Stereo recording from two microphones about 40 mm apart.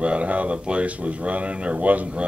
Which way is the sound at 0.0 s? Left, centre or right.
Right.